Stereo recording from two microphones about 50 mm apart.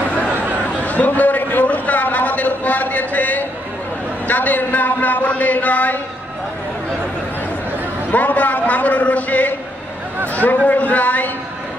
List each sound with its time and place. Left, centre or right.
0.8 s a sound: left
4.3 s speech: left
8.1 s speech: left